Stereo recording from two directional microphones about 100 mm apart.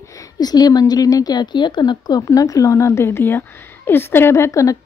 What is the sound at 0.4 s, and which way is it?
A woman's voice, 40° left (ahead or behind).